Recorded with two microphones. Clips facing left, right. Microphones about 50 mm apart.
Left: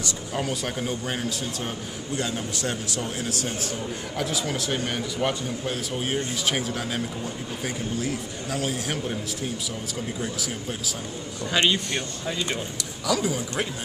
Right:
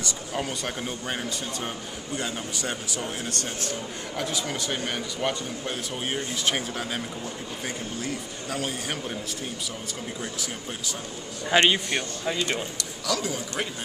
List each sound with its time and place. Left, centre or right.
0.0 s speech: centre
10.2 s speech: centre
11.5 s speech: right
13.0 s speech: centre